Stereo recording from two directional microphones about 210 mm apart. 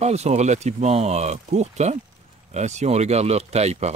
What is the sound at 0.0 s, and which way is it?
Speech, 30° right (ahead or behind).